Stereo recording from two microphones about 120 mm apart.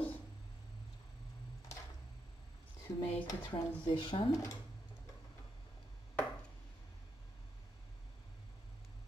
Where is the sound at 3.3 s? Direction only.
40° left (ahead or behind).